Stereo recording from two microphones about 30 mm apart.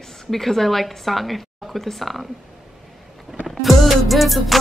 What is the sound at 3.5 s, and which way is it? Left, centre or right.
A woman's voice, centre.